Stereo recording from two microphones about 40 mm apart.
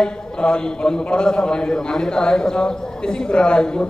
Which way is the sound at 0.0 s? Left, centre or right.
Left.